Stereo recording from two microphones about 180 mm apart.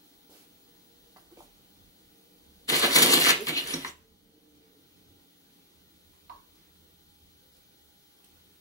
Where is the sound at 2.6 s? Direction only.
20° left (ahead or behind).